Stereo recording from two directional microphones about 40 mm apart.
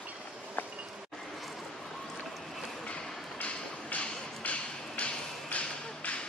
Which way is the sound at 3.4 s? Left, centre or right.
Left.